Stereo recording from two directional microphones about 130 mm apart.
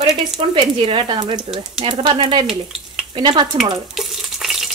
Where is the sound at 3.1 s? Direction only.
40° right (ahead or behind).